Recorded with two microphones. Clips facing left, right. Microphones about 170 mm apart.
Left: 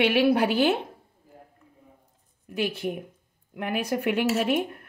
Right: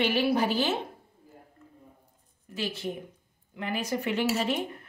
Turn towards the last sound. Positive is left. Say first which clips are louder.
# left 4 dB
turn(degrees=55)  # may be behind; listen again after turning